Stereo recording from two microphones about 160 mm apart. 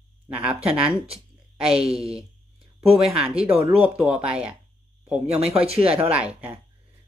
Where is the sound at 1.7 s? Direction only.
40° right (ahead or behind).